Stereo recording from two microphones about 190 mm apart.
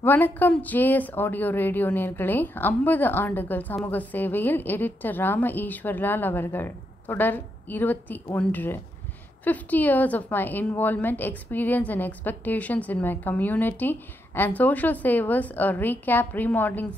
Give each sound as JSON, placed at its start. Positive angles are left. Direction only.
{"t": 0.0, "sound": "a woman's voice", "side_deg": 10}